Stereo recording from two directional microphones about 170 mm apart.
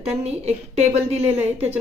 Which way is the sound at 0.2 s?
40° right (ahead or behind).